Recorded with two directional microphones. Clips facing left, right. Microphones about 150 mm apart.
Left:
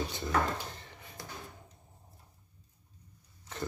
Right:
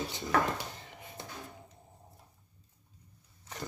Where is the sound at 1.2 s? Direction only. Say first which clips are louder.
Even; 25° right (ahead or behind).